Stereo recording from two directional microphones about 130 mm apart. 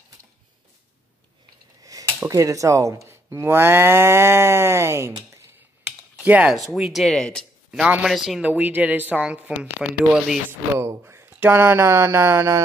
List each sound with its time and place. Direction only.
1.8 s a sound: 25° right (ahead or behind)
2.2 s speech: 25° right (ahead or behind)
6.2 s speech: 10° right (ahead or behind)
7.7 s a woman's voice: 5° right (ahead or behind)
11.0 s speech: 20° right (ahead or behind)